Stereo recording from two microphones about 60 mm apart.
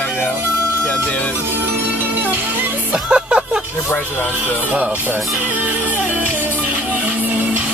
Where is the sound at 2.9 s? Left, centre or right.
Centre.